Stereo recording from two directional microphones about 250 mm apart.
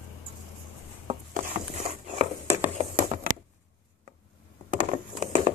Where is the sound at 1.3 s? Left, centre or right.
Right.